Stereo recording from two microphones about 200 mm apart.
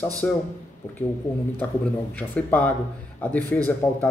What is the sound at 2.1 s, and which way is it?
Speech, 10° left (ahead or behind).